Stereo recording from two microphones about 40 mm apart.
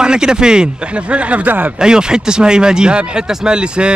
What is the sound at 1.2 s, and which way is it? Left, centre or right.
Speech, right.